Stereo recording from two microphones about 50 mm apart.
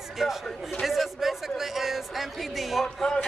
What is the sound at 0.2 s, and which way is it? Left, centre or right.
A man's voice, centre.